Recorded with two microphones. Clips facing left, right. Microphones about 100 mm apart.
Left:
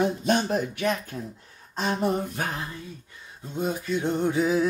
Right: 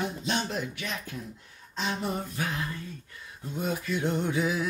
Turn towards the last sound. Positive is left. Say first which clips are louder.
# left 5 dB
turn(degrees=30)  # may be behind; listen again after turning